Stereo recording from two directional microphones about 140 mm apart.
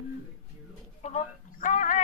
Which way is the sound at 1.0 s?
60° left (ahead or behind).